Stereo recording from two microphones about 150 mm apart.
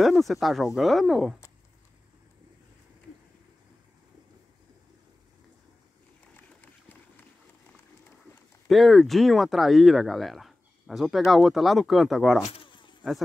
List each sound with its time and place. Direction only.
0.0 s speech: centre (ahead or behind)
8.6 s speech: centre (ahead or behind)
12.4 s a sound: 35° left (ahead or behind)